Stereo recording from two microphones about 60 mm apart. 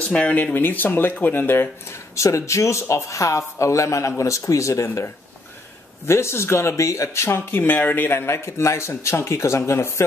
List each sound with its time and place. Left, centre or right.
0.0 s speech: left
0.6 s speech: left
2.1 s speech: left
7.2 s speech: left